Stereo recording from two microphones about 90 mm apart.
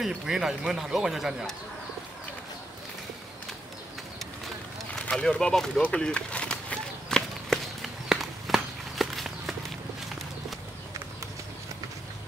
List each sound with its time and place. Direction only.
0.0 s speech: 5° right (ahead or behind)
4.9 s speech: 10° left (ahead or behind)
5.8 s run: 10° left (ahead or behind)